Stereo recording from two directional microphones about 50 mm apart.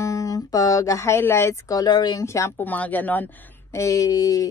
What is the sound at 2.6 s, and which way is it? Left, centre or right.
Speech, left.